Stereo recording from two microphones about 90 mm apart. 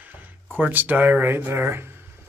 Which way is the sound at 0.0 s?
20° right (ahead or behind).